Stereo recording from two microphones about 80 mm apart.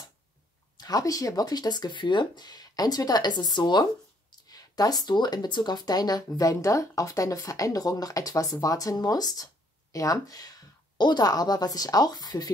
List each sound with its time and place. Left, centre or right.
0.7 s speech: left
4.3 s speech: left